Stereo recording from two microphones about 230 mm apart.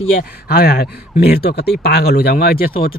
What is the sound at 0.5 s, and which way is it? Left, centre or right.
Speech, left.